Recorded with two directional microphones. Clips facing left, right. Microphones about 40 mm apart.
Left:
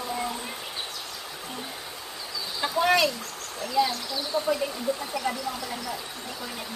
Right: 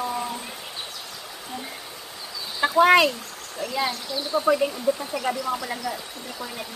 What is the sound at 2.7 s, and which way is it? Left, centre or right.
Speech, right.